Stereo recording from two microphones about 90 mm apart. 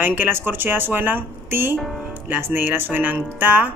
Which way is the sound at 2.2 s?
20° right (ahead or behind).